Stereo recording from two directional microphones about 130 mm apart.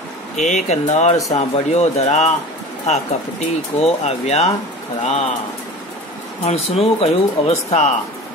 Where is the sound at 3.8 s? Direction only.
55° left (ahead or behind).